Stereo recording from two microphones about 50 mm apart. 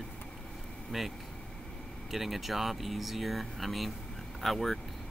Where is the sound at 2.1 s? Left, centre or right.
Centre.